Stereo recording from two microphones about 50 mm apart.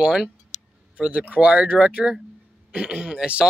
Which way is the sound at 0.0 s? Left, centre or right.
Centre.